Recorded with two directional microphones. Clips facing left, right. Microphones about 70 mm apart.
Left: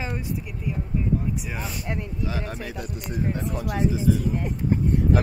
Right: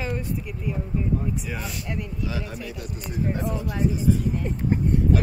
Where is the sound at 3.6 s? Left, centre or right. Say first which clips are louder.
Left 1 dB; left.